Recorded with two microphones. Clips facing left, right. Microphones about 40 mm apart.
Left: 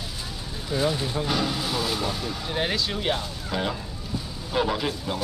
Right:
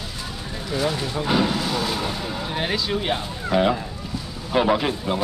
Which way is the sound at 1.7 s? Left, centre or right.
Centre.